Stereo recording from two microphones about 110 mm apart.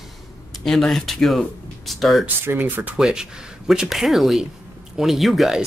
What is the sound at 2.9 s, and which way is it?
Speech, 5° right (ahead or behind).